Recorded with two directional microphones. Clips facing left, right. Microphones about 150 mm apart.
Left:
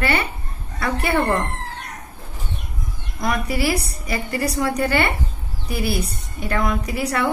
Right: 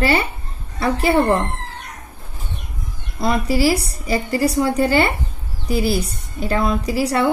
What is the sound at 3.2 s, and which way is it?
A woman's voice, 30° right (ahead or behind).